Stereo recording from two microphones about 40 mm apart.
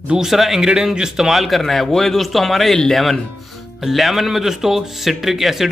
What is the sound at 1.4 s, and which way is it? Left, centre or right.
A man's voice, centre.